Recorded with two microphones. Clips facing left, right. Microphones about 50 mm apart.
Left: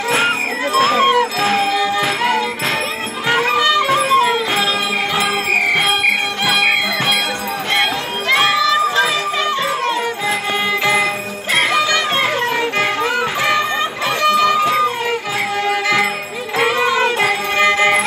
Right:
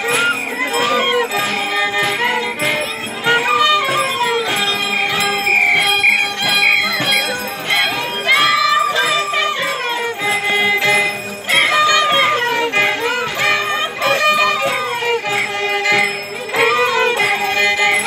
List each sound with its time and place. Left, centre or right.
1.7 s music: centre
3.3 s music: centre
6.4 s music: centre
10.6 s music: centre
11.5 s music: centre
14.0 s music: centre
17.6 s music: centre